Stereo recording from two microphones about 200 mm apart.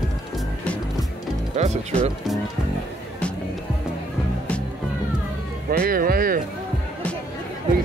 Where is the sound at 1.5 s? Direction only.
35° right (ahead or behind).